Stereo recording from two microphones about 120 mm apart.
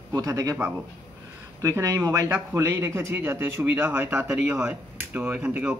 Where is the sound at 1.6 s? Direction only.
25° right (ahead or behind).